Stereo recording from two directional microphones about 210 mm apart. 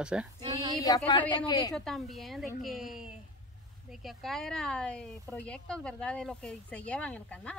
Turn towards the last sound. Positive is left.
turn(degrees=5)  # may be behind; listen again after turning